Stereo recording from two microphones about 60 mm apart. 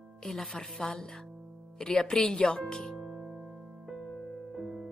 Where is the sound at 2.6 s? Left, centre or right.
Centre.